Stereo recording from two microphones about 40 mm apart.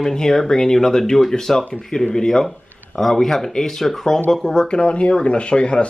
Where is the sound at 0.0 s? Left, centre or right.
Centre.